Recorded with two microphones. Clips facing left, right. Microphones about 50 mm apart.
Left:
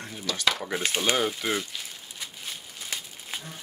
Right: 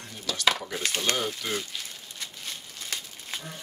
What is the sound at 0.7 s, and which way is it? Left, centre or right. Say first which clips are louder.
Speech: left 3 dB; centre.